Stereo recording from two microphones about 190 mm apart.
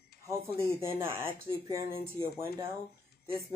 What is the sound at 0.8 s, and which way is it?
Speech, 15° right (ahead or behind).